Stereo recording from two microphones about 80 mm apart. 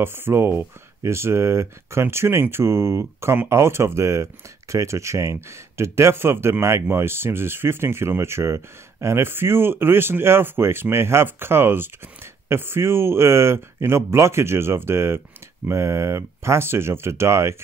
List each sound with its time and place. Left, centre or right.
0.0 s speech: right